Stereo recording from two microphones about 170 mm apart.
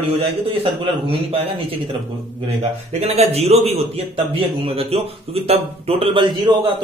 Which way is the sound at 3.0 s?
40° right (ahead or behind).